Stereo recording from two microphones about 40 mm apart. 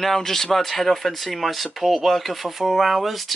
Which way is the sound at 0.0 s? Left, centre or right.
Centre.